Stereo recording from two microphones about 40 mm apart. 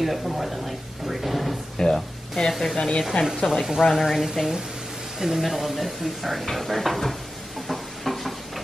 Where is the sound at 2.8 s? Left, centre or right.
Left.